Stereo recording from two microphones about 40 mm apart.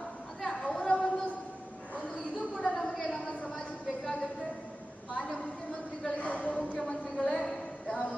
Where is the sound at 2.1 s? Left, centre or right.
Centre.